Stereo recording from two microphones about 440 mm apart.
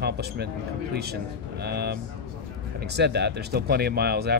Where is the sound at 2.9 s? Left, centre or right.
Right.